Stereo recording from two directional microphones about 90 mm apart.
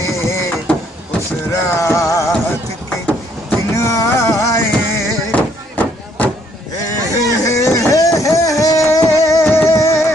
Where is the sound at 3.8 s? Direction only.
35° left (ahead or behind).